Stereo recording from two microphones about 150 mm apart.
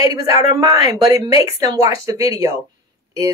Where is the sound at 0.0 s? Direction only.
20° right (ahead or behind).